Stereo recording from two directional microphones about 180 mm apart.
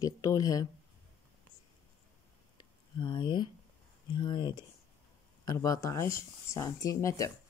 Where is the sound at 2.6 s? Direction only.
25° left (ahead or behind).